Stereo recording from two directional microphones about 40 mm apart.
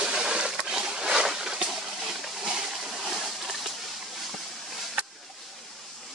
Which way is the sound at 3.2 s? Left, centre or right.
Centre.